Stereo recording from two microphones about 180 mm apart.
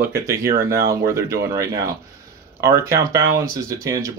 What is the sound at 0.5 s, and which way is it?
Speech, 55° right (ahead or behind).